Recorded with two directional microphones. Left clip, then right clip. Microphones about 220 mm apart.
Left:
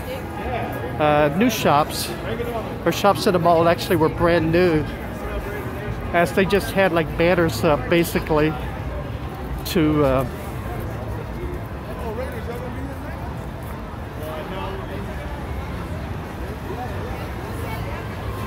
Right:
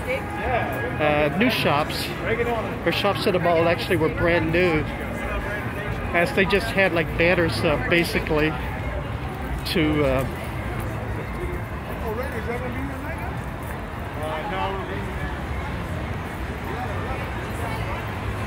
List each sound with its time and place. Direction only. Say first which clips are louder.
0.9 s speech: left 4 dB; 25° left (ahead or behind)
6.1 s speech: left 2 dB; 20° left (ahead or behind)
9.7 s speech: left 3 dB; 20° left (ahead or behind)